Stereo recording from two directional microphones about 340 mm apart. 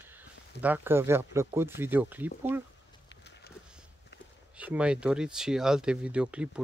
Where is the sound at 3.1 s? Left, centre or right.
Left.